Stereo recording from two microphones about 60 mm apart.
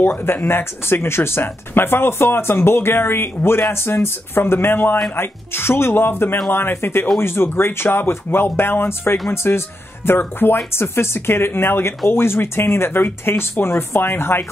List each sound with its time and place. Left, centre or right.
0.0 s speech: left